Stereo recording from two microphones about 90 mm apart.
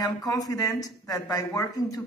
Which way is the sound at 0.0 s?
40° left (ahead or behind).